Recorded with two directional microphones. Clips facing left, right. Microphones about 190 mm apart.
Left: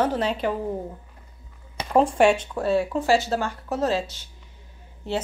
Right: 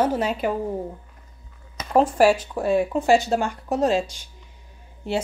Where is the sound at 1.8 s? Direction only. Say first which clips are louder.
Left 2 dB; 30° left (ahead or behind).